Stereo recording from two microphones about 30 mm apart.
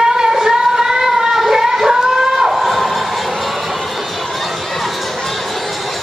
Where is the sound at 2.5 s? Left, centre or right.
Centre.